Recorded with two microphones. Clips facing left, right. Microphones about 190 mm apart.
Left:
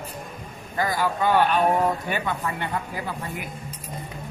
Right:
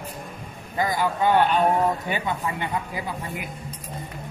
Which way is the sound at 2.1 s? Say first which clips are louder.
Even; 15° right (ahead or behind).